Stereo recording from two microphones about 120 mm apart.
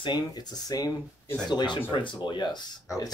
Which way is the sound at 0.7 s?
30° left (ahead or behind).